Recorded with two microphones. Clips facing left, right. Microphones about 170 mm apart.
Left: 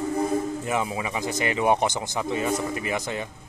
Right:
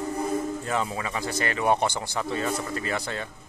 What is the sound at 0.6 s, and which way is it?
Speech, 15° left (ahead or behind).